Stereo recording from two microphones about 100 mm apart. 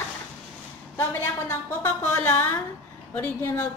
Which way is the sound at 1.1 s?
25° left (ahead or behind).